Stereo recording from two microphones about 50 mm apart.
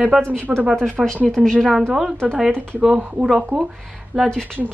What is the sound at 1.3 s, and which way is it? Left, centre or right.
Speech, centre.